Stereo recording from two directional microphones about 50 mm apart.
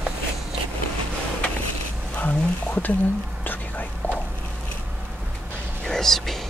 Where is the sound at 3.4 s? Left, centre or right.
Left.